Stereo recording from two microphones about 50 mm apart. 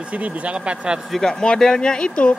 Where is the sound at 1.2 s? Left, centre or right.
Centre.